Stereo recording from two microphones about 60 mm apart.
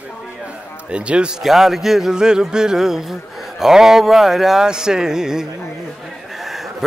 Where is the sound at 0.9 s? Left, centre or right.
Centre.